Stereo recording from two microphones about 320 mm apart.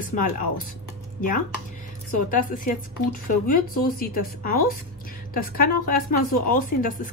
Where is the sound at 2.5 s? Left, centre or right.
Left.